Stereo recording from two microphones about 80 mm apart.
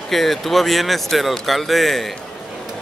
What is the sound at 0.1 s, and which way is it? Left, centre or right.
Speech, centre.